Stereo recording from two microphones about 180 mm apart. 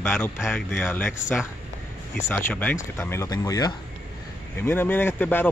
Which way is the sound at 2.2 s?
10° left (ahead or behind).